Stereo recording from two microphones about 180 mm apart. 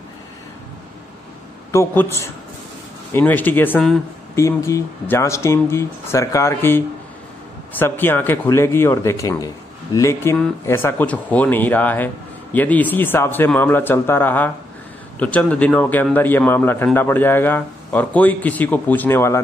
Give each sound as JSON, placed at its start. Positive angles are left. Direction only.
{"t": 1.7, "sound": "a man's voice", "side_deg": 15}